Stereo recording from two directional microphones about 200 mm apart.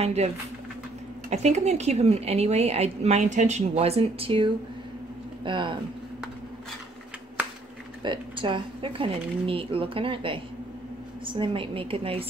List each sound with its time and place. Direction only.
0.0 s a woman's voice: 35° right (ahead or behind)
1.3 s a woman's voice: 35° right (ahead or behind)
7.4 s a sound: 10° right (ahead or behind)
8.0 s speech: 25° right (ahead or behind)